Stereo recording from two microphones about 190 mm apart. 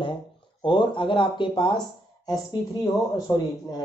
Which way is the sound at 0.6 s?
25° left (ahead or behind).